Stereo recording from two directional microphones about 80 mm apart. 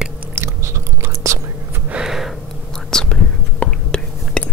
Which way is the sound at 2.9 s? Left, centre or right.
Centre.